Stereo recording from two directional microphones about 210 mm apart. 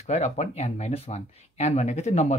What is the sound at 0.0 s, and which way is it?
Speech, 30° left (ahead or behind).